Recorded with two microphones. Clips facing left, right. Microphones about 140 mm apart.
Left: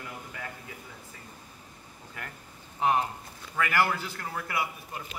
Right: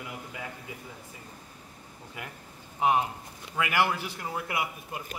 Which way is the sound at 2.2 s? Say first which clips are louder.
Right 1 dB; 15° right (ahead or behind).